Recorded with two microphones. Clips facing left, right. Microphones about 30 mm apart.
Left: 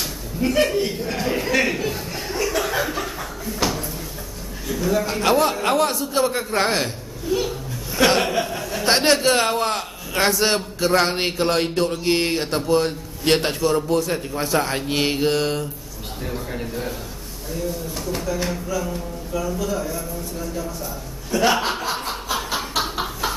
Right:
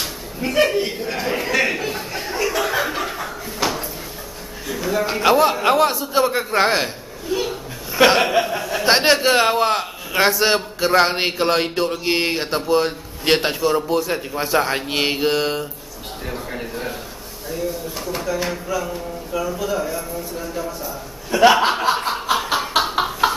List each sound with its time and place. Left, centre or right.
0.0 s chuckle: centre
3.5 s drawer open or close: centre
4.6 s a man's voice: centre
21.3 s snicker: right